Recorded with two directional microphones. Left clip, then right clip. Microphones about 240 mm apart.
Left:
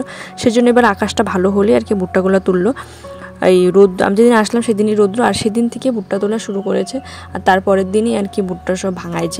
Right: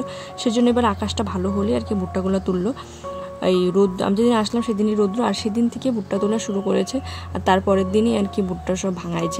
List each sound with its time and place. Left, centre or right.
0.4 s speech: left